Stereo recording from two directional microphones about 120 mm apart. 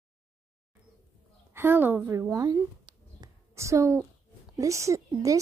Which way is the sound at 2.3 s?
30° right (ahead or behind).